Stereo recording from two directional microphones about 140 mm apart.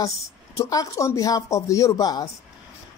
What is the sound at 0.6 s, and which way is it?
Speech, 25° left (ahead or behind).